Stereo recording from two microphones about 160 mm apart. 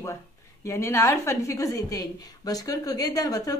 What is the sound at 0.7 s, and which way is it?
A woman's voice, 15° left (ahead or behind).